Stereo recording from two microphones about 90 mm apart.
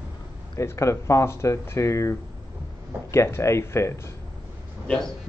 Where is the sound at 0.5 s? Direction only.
35° left (ahead or behind).